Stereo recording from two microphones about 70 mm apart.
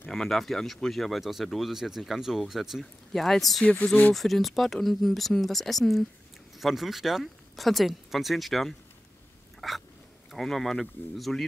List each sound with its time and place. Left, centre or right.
0.1 s speech: centre
3.6 s speech: left
4.1 s speech: centre
9.6 s a sound: centre
10.3 s speech: centre